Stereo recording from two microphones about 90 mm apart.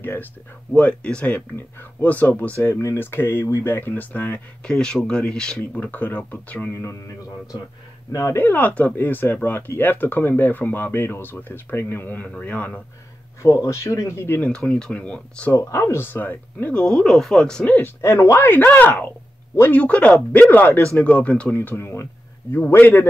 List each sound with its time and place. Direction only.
0.0 s speech: 25° left (ahead or behind)
2.7 s speech: 30° left (ahead or behind)
4.7 s speech: 10° left (ahead or behind)
5.8 s speech: 20° left (ahead or behind)
6.7 s speech: 30° left (ahead or behind)
8.1 s speech: 35° left (ahead or behind)
8.4 s speech: 20° left (ahead or behind)
13.4 s speech: 35° left (ahead or behind)
14.4 s speech: 15° left (ahead or behind)
15.5 s speech: 35° left (ahead or behind); by 16.8 s 20° left (ahead or behind)
16.8 s speech: 5° left (ahead or behind)
18.0 s speech: 35° left (ahead or behind)
18.5 s speech: 20° left (ahead or behind)